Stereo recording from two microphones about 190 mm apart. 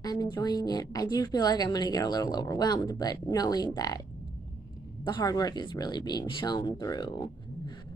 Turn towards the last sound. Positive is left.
turn(degrees=25)  # may be behind; listen again after turning